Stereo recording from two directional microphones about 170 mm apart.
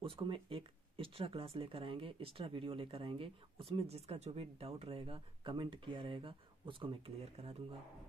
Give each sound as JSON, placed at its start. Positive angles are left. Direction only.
{"t": 0.0, "sound": "speech", "side_deg": -30}